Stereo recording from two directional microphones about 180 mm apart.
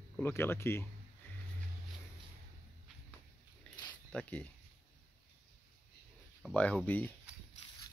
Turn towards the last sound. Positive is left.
turn(degrees=10)  # may be behind; listen again after turning